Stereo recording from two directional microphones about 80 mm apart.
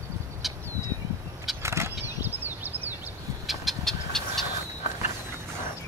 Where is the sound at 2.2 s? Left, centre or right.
Right.